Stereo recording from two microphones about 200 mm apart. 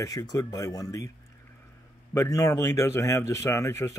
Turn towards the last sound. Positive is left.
turn(degrees=15)  # may be behind; listen again after turning